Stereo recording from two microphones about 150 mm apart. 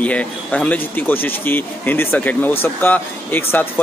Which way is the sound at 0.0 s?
10° left (ahead or behind).